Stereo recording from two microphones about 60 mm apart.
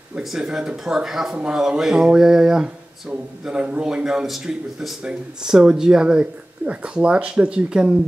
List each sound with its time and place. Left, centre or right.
0.2 s speech: centre